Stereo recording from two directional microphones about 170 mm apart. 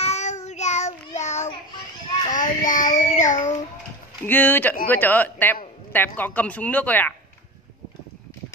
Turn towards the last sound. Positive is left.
turn(degrees=10)  # may be behind; listen again after turning